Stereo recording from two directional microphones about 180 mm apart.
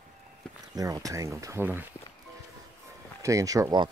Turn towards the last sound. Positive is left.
turn(degrees=-20)  # may be behind; listen again after turning